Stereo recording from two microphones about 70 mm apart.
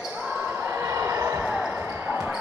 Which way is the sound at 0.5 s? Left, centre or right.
Right.